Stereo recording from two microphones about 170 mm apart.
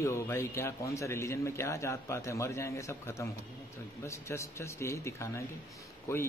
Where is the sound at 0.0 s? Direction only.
15° left (ahead or behind).